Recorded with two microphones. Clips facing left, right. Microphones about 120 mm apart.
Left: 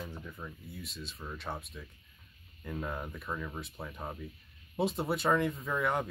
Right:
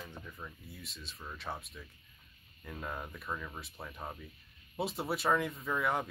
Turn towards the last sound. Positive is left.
turn(degrees=0)  # may be behind; listen again after turning